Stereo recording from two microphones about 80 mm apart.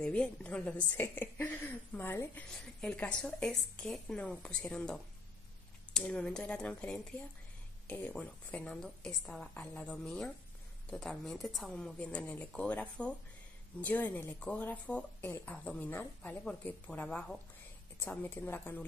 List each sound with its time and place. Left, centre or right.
0.0 s a woman's voice: centre
7.8 s a sound: centre
8.2 s a woman's voice: centre
8.6 s a woman's voice: centre
11.7 s a woman's voice: centre